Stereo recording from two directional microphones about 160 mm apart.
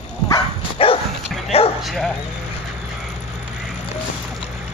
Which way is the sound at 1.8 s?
Centre (ahead or behind).